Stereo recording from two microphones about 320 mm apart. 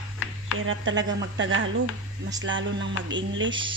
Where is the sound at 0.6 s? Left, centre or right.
Right.